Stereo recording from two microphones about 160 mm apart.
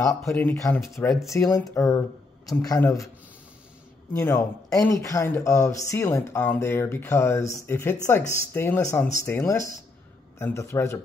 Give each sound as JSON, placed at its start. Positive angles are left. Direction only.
{"t": 0.0, "sound": "speech", "side_deg": 15}
{"t": 4.1, "sound": "speech", "side_deg": 15}